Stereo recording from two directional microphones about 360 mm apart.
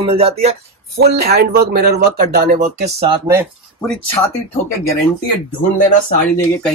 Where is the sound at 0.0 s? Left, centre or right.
Centre.